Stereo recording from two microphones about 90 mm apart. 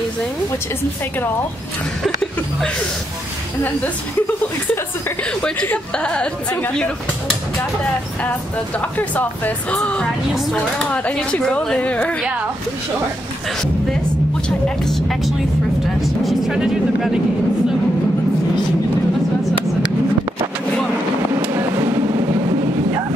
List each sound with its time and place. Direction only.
5.3 s speech: 15° left (ahead or behind)
8.2 s speech: 15° left (ahead or behind)
10.9 s speech: 15° left (ahead or behind)
14.9 s speech: 5° left (ahead or behind)